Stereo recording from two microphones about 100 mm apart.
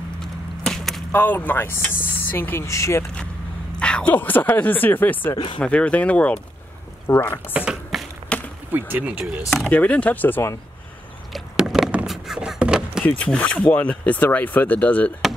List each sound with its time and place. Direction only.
0.2 s a sound: 5° left (ahead or behind)
1.1 s speech: 20° left (ahead or behind)
3.8 s speech: 15° left (ahead or behind)
7.5 s tap: 5° right (ahead or behind)
8.3 s a sound: 10° left (ahead or behind)
8.7 s speech: 15° right (ahead or behind)
9.5 s speech: 10° left (ahead or behind)
11.3 s door: 5° right (ahead or behind)
12.1 s a sound: 5° right (ahead or behind)
13.0 s speech: 10° left (ahead or behind)